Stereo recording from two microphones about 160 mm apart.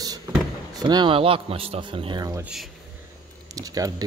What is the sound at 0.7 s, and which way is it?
Speech, 30° right (ahead or behind).